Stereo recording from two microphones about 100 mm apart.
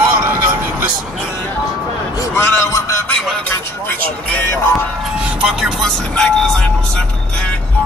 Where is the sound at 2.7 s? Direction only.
30° left (ahead or behind).